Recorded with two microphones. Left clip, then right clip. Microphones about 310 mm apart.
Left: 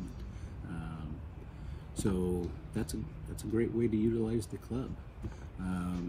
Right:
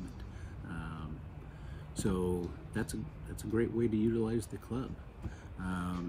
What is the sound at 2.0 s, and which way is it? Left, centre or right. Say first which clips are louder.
Speech: even; centre.